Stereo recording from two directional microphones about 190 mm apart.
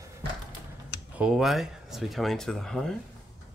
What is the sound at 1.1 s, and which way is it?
Speech, 5° right (ahead or behind).